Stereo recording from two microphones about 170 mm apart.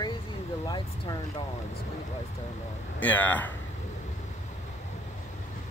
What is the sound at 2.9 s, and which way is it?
Speech, 10° left (ahead or behind).